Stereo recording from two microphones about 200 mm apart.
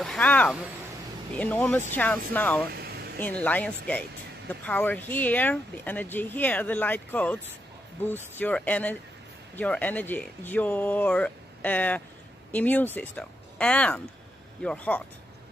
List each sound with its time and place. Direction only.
0.0 s speech: 5° left (ahead or behind)
2.7 s a sound: 50° right (ahead or behind)
3.2 s speech: 10° left (ahead or behind)